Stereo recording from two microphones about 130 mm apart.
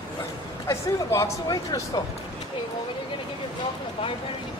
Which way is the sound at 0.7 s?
25° left (ahead or behind).